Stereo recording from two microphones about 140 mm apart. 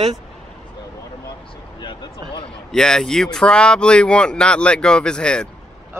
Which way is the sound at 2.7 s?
5° left (ahead or behind).